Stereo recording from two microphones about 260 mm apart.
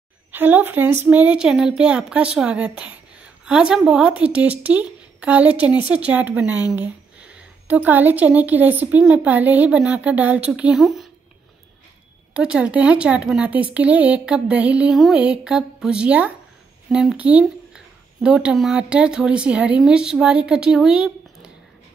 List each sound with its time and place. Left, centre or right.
0.3 s a woman's voice: centre
12.4 s a woman's voice: centre